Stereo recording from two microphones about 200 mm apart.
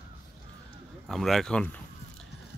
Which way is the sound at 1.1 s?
Centre (ahead or behind).